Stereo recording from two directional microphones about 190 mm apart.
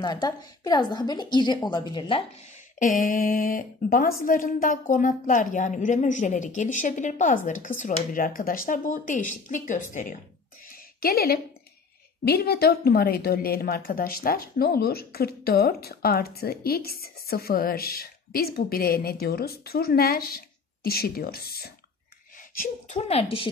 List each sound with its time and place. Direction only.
0.0 s a woman's voice: 20° left (ahead or behind)
2.8 s a woman's voice: 45° left (ahead or behind)
10.7 s a sound: 55° left (ahead or behind)
12.3 s a woman's voice: 55° left (ahead or behind)
22.5 s a woman's voice: 45° left (ahead or behind)